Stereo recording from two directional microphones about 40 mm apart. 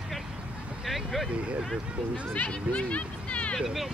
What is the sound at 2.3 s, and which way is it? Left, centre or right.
Speech, left.